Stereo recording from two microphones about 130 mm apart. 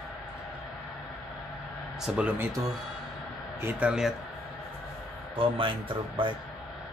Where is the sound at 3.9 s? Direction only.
5° right (ahead or behind).